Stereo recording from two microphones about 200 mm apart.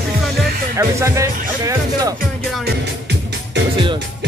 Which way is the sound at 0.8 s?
15° right (ahead or behind).